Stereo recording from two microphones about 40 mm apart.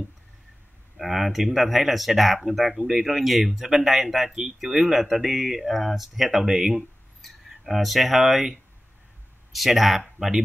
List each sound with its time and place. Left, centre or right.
0.9 s speech: centre